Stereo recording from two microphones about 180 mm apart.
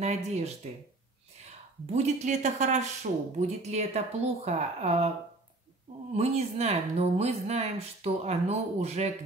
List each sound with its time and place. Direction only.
0.0 s speech: 40° right (ahead or behind)
6.1 s speech: 35° right (ahead or behind)